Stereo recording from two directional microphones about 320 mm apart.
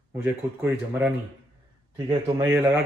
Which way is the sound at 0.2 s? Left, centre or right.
Centre.